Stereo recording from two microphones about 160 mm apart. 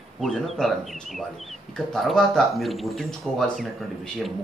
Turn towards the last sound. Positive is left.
turn(degrees=0)  # may be behind; listen again after turning